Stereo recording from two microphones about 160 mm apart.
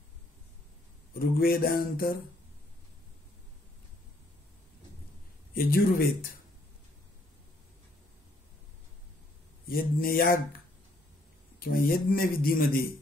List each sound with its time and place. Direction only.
1.1 s speech: 65° left (ahead or behind)
5.5 s speech: 65° left (ahead or behind)
9.7 s speech: 65° left (ahead or behind)
11.6 s speech: 70° left (ahead or behind)